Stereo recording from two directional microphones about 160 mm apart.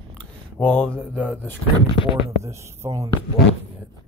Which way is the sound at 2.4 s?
20° right (ahead or behind).